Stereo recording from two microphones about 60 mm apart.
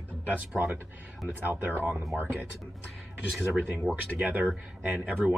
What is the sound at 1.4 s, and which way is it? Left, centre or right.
Speech, right.